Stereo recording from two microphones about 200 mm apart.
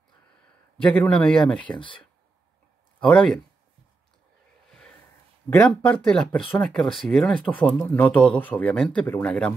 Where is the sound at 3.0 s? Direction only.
5° left (ahead or behind).